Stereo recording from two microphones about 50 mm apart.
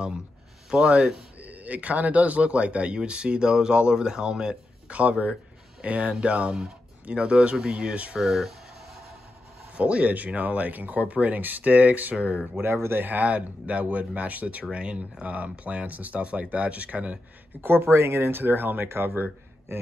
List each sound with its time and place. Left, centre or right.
0.7 s speech: centre
8.2 s speech: centre
9.8 s speech: right
12.5 s speech: right
13.0 s speech: right
17.6 s speech: right